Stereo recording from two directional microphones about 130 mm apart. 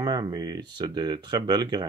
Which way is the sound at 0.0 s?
30° right (ahead or behind).